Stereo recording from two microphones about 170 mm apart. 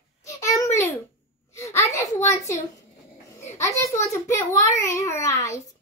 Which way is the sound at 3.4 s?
15° left (ahead or behind).